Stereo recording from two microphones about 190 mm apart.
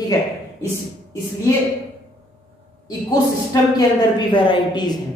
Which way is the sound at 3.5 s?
20° left (ahead or behind).